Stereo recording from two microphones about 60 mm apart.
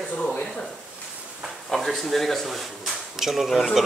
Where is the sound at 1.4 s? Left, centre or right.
Centre.